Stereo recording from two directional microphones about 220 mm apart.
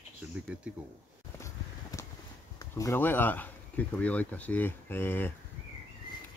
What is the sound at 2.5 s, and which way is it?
Speech, 15° left (ahead or behind).